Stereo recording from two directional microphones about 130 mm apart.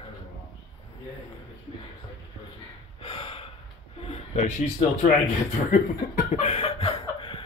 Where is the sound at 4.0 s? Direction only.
60° left (ahead or behind).